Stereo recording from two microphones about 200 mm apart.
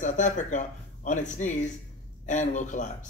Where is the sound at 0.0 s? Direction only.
40° left (ahead or behind).